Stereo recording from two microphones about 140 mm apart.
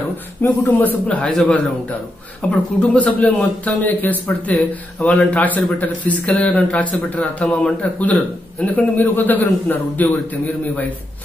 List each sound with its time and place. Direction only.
0.4 s speech: 15° left (ahead or behind)